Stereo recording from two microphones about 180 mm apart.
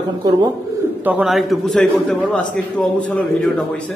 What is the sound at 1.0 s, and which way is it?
A man's voice, 10° right (ahead or behind).